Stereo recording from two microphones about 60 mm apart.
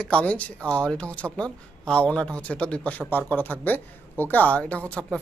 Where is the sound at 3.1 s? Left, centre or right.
Left.